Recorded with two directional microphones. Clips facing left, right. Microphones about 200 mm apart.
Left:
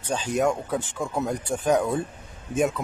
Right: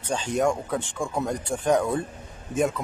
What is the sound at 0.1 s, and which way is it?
Speech, 5° left (ahead or behind).